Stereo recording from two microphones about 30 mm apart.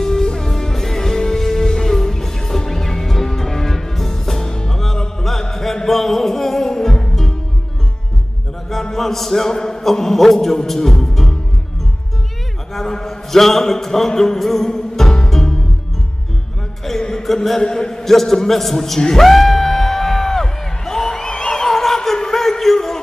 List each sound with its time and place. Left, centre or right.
0.0 s music: centre
8.9 s a sound: centre
9.5 s a man's voice: centre
10.7 s music: centre
12.7 s a sound: centre
14.7 s music: left
16.9 s music: centre
17.6 s a man's voice: left
18.0 s a man's voice: centre
19.1 s a sound: centre